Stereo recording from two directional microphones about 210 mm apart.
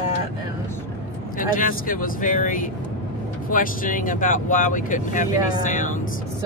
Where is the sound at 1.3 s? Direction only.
40° left (ahead or behind).